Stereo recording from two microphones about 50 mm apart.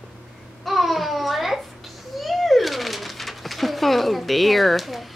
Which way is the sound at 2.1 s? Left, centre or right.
Centre.